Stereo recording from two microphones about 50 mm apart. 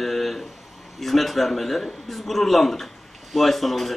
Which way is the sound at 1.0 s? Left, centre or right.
Centre.